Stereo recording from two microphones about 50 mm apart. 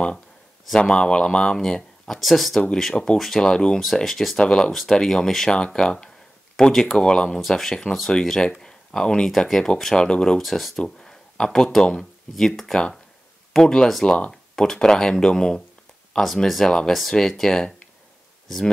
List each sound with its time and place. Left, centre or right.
0.7 s speech: centre
3.4 s speech: centre
3.8 s speech: centre
4.4 s speech: centre
7.2 s speech: centre
10.4 s speech: centre
10.8 s speech: centre